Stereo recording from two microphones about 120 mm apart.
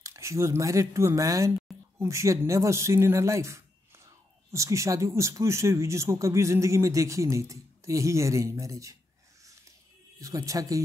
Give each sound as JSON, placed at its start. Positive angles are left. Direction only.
{"t": 0.0, "sound": "speech", "side_deg": -25}
{"t": 10.1, "sound": "speech", "side_deg": -30}